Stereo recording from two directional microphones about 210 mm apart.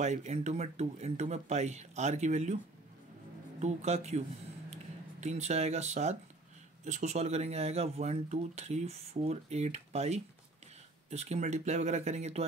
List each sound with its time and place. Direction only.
0.0 s speech: 35° right (ahead or behind)
5.2 s speech: 35° right (ahead or behind)